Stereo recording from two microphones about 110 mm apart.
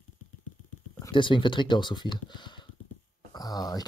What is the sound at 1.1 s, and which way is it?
Speech, 45° left (ahead or behind).